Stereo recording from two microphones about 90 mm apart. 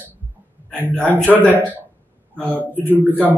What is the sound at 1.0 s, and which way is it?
Speech, 15° left (ahead or behind).